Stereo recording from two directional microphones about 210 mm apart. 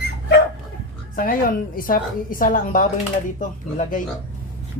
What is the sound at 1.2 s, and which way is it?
A woman's voice, 40° left (ahead or behind).